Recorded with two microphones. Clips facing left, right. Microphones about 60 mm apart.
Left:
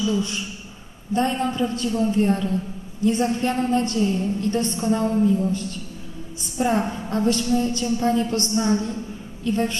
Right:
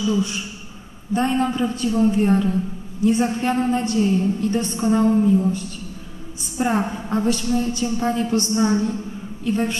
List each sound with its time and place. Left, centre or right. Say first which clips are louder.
0.0 s a woman's voice: right 2 dB; centre
6.6 s a woman's voice: right 1 dB; centre